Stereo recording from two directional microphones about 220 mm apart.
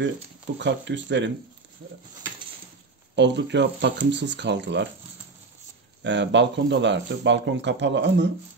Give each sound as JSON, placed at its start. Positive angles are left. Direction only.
{"t": 0.6, "sound": "speech", "side_deg": -55}
{"t": 3.2, "sound": "speech", "side_deg": -50}
{"t": 6.0, "sound": "speech", "side_deg": -55}